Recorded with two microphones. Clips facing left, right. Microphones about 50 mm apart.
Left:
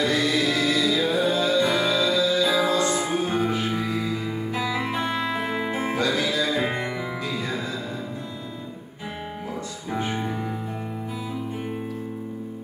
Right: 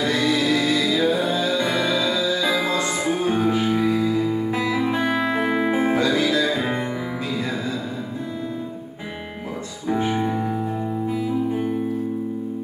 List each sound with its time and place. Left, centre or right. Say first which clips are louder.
0.1 s music: right 2 dB; centre
1.7 s music: even; right
3.6 s music: right 6 dB; centre
9.8 s music: right 6 dB; centre